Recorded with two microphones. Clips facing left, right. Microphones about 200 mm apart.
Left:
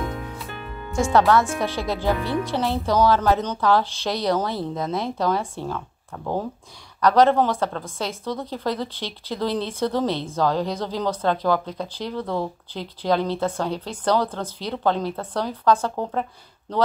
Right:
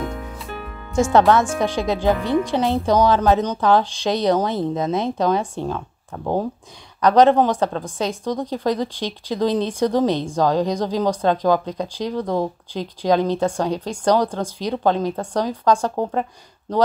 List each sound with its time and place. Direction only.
1.3 s speech: 20° right (ahead or behind)